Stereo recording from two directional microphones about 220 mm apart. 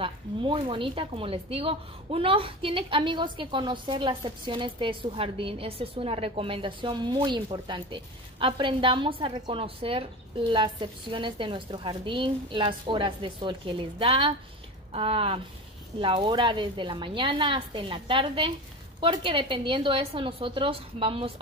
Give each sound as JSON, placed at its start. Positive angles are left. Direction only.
{"t": 0.0, "sound": "speech", "side_deg": -25}